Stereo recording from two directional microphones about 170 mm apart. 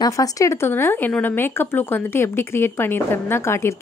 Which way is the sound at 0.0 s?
20° left (ahead or behind).